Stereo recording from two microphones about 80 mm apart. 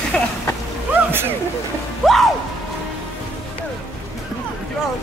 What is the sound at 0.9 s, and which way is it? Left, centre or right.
Splash, right.